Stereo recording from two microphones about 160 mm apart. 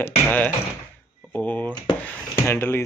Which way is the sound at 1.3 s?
10° left (ahead or behind).